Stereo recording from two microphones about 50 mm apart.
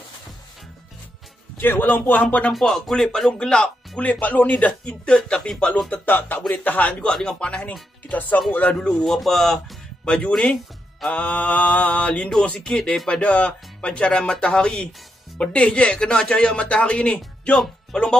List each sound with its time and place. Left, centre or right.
1.6 s a man's voice: left
2.6 s speech: centre
4.0 s speech: left
5.1 s speech: centre
5.9 s a man's voice: left
7.1 s speech: centre
8.1 s a man's voice: left
9.0 s speech: centre
10.0 s speech: centre